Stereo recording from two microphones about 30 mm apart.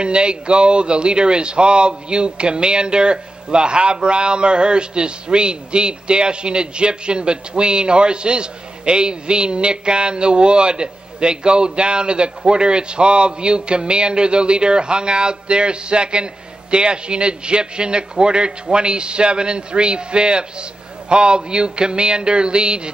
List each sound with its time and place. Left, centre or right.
0.0 s speech: right